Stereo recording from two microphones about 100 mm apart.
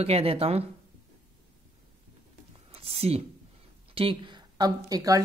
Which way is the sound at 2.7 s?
85° right.